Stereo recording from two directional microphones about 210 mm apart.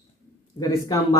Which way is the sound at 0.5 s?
20° left (ahead or behind).